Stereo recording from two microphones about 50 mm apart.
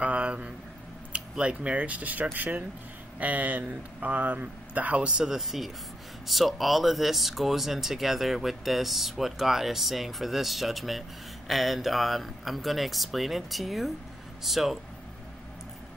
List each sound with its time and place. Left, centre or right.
0.0 s a sound: right
1.1 s speech: right
5.1 s speech: centre